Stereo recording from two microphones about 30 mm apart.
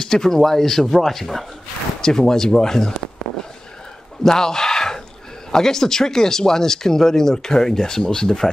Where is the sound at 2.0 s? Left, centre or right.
Centre.